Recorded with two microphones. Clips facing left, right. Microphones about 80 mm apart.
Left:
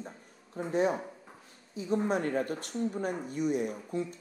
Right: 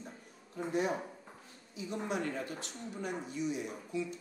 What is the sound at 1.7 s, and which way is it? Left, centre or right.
Speech, left.